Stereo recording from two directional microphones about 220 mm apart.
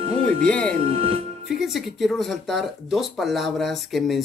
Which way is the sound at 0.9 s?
25° right (ahead or behind).